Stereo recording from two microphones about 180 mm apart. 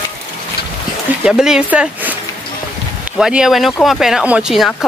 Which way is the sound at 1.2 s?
5° right (ahead or behind).